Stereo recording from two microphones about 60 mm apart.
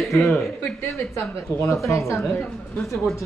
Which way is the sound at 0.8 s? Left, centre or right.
Left.